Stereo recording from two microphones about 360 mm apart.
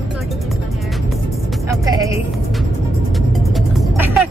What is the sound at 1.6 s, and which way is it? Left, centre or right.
Speech, centre.